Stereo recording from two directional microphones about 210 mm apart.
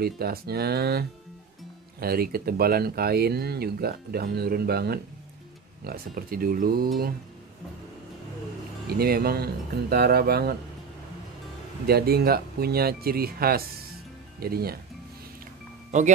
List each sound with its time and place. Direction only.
0.0 s speech: 45° right (ahead or behind)
8.8 s speech: 45° right (ahead or behind)
11.8 s speech: 50° right (ahead or behind)